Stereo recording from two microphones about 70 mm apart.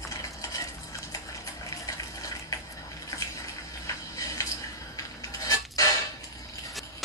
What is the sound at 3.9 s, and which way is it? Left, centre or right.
Music, left.